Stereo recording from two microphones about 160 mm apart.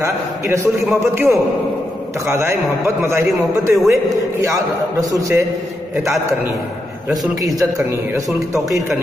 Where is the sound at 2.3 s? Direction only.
15° right (ahead or behind).